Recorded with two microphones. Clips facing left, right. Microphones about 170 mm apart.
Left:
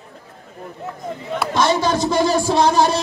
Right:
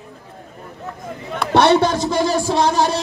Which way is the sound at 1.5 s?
65° right (ahead or behind).